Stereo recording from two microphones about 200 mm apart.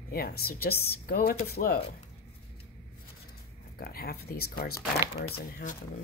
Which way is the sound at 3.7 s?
50° left (ahead or behind).